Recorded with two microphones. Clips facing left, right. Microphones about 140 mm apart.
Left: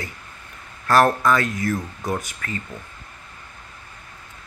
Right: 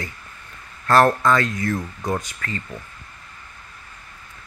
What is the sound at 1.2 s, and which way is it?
Speech, 15° left (ahead or behind).